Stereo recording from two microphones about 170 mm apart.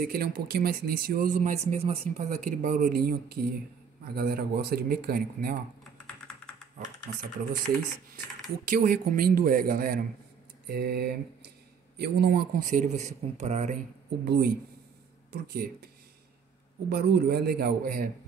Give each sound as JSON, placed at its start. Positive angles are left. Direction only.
{"t": 0.0, "sound": "speech", "side_deg": -65}
{"t": 5.9, "sound": "computer keyboard", "side_deg": 5}
{"t": 8.6, "sound": "speech", "side_deg": -55}
{"t": 10.7, "sound": "speech", "side_deg": -70}
{"t": 14.2, "sound": "speech", "side_deg": -70}
{"t": 16.9, "sound": "speech", "side_deg": -70}